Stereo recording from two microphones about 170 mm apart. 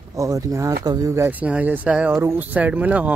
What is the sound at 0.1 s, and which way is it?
Speech, 20° right (ahead or behind).